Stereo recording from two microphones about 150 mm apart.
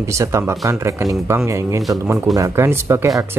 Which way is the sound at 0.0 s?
20° right (ahead or behind).